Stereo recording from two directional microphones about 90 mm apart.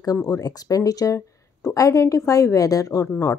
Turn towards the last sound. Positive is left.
turn(degrees=40)  # may be behind; listen again after turning